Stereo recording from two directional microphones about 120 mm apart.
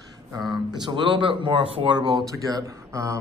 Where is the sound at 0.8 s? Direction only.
45° right (ahead or behind).